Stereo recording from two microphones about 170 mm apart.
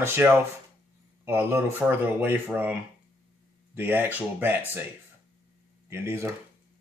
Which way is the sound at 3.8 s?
10° right (ahead or behind).